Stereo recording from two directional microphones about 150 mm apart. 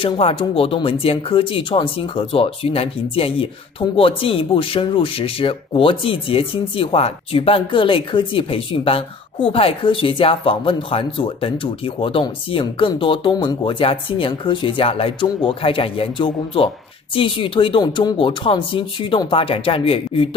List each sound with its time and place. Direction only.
0.0 s speech: 35° left (ahead or behind)